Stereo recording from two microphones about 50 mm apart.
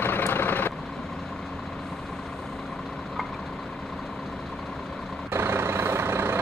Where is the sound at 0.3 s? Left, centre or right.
Left.